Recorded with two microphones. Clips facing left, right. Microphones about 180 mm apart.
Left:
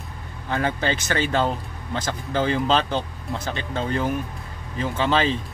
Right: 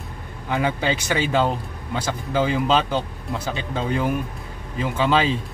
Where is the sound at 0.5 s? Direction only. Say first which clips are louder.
Right 1 dB; 10° right (ahead or behind).